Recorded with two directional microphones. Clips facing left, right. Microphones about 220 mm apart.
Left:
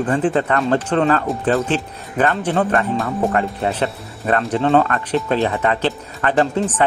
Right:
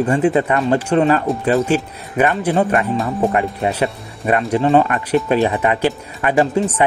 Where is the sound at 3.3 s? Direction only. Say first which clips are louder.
Right 1 dB; 15° right (ahead or behind).